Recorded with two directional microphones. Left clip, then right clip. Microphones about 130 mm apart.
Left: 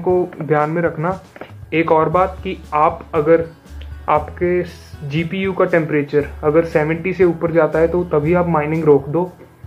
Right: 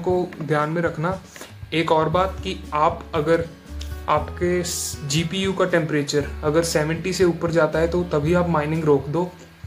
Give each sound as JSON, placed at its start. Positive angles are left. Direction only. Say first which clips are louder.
{"t": 0.0, "sound": "speech", "louder": "left 5 dB", "side_deg": -20}